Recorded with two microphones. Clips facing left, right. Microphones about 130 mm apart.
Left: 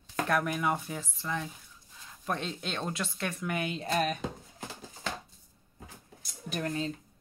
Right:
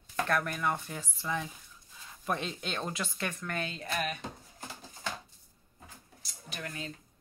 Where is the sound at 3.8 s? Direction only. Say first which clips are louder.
Left 7 dB; 35° left (ahead or behind).